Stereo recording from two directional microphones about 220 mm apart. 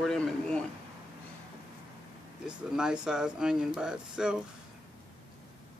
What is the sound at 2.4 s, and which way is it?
Speech, 5° right (ahead or behind).